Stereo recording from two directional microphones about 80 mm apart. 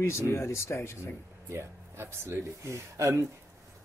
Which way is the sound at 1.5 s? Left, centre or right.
Right.